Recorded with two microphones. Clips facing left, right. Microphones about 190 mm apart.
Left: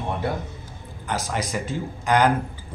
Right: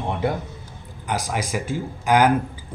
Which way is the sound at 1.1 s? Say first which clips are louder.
Right 2 dB; 10° right (ahead or behind).